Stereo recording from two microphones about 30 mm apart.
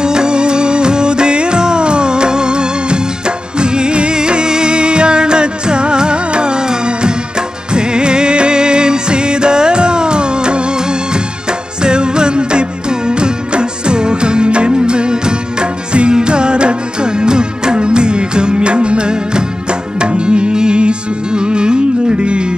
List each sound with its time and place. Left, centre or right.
0.0 s music: right